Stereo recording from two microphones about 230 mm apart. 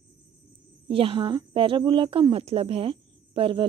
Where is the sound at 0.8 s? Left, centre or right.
Right.